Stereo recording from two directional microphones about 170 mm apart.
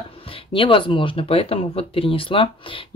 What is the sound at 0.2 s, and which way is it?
Speech, 30° left (ahead or behind).